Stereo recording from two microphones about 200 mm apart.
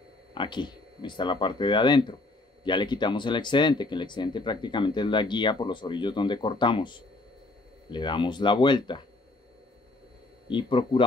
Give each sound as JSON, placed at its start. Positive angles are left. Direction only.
{"t": 0.3, "sound": "speech", "side_deg": 25}
{"t": 10.5, "sound": "speech", "side_deg": 25}